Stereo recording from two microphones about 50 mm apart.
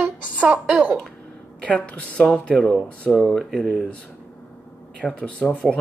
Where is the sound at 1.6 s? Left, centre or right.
Left.